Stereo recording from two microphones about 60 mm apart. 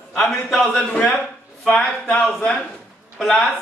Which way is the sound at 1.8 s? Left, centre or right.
Left.